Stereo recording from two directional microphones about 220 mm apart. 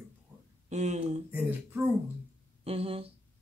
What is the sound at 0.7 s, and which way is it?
Speech, 30° right (ahead or behind).